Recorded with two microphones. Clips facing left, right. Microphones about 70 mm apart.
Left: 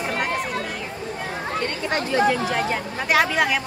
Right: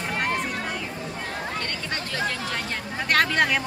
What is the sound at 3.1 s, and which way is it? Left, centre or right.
Speech, centre.